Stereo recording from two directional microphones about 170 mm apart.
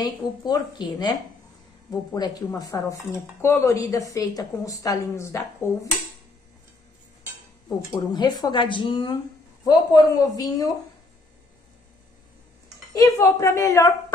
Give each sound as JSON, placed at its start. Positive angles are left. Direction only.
{"t": 0.0, "sound": "speech", "side_deg": 25}
{"t": 7.9, "sound": "speech", "side_deg": 25}
{"t": 12.9, "sound": "a woman's voice", "side_deg": 15}